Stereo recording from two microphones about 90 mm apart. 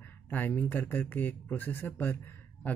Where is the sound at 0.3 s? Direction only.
20° left (ahead or behind).